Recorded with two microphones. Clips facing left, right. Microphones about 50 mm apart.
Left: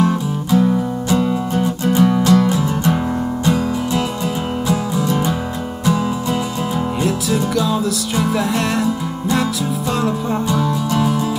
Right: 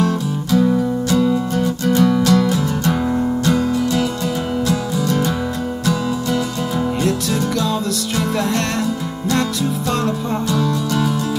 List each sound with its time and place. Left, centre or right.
0.0 s music: centre
7.0 s music: centre
10.5 s music: centre